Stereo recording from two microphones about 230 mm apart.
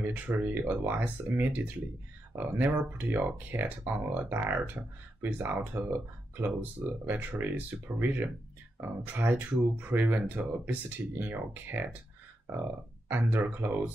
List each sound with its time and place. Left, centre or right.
0.0 s speech: centre
13.1 s speech: centre